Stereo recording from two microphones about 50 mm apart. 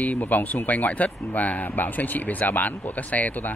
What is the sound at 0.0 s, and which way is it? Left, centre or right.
Speech, left.